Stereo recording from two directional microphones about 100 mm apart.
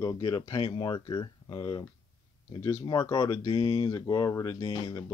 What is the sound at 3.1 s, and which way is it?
Speech, 40° left (ahead or behind).